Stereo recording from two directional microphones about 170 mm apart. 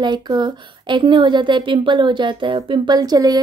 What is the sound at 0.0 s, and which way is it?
A woman's voice, 25° right (ahead or behind).